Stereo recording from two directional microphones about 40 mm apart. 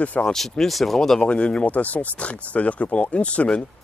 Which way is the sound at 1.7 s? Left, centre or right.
Left.